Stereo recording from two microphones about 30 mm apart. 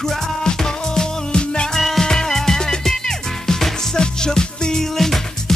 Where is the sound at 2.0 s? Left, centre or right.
Centre.